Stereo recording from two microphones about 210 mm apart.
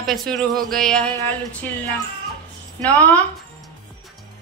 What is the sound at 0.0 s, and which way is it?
Speech, centre (ahead or behind).